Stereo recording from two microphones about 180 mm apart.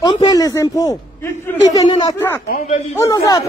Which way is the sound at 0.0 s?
25° left (ahead or behind).